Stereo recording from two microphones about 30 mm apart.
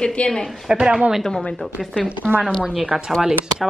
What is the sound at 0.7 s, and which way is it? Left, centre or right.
Speech, right.